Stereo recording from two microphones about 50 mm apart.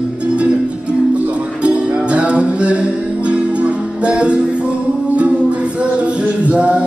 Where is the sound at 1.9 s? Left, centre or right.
Right.